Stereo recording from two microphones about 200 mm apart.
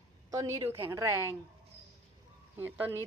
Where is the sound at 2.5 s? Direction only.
10° right (ahead or behind).